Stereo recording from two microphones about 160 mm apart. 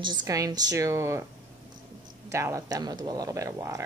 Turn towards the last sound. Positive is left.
turn(degrees=-20)  # may be behind; listen again after turning